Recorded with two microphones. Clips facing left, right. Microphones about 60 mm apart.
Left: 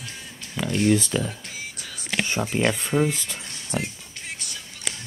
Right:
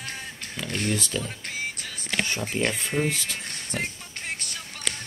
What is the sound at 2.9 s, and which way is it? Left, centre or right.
Speech, left.